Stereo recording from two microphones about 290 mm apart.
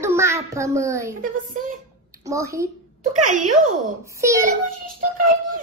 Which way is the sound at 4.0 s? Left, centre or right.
Centre.